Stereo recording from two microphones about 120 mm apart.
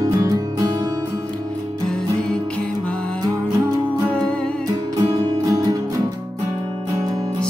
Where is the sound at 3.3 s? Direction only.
30° right (ahead or behind).